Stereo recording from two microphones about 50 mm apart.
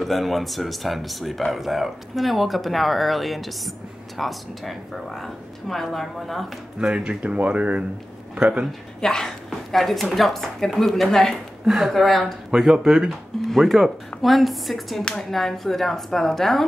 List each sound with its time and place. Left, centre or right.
0.0 s speech: centre
6.8 s speech: centre
7.2 s speech: right
9.0 s a woman's voice: centre
11.6 s speech: centre
13.5 s speech: centre